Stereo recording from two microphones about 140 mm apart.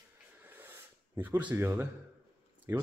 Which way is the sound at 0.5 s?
15° right (ahead or behind).